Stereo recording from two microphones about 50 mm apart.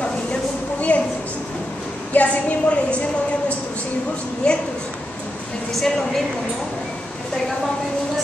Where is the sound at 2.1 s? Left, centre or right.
Left.